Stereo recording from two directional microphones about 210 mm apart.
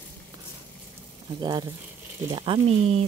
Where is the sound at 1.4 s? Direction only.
20° right (ahead or behind).